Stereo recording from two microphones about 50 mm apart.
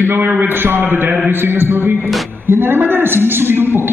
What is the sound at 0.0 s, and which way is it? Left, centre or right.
A man's voice, right.